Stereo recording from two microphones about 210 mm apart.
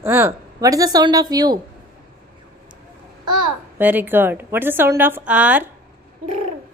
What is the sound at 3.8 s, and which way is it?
A woman's voice, 10° right (ahead or behind).